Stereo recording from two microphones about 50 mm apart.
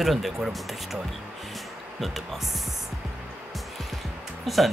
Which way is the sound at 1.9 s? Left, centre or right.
Centre.